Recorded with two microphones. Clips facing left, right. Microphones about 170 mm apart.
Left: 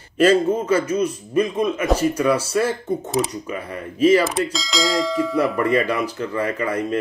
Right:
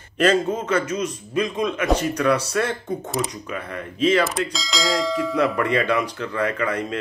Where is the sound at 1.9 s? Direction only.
5° left (ahead or behind).